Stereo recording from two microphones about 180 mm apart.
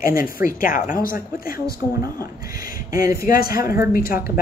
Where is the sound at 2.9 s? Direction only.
55° left (ahead or behind).